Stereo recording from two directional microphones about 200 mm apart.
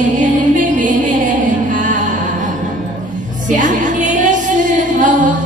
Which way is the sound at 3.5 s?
40° right (ahead or behind).